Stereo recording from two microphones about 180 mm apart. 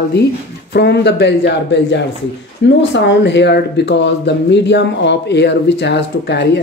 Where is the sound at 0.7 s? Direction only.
65° left (ahead or behind).